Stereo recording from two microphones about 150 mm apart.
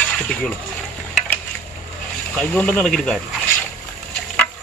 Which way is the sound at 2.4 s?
10° left (ahead or behind).